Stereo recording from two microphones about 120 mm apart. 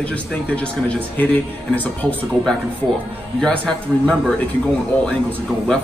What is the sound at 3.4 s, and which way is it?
Speech, 10° left (ahead or behind).